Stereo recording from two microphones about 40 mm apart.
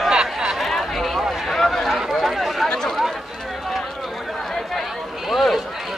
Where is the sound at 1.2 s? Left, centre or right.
Centre.